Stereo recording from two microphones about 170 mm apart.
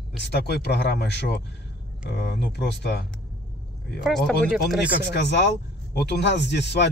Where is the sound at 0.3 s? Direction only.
80° left.